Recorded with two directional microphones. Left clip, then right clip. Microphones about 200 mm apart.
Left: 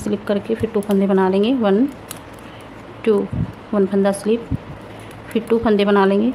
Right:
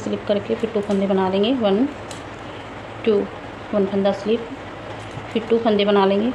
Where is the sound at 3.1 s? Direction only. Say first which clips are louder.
Left 2 dB; 40° left (ahead or behind).